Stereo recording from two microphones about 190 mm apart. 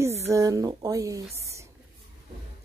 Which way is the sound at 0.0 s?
15° right (ahead or behind).